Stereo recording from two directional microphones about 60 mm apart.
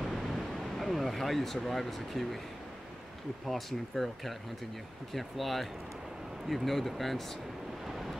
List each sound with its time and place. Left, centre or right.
0.0 s a sound: centre
3.4 s speech: centre
7.8 s wind noise: centre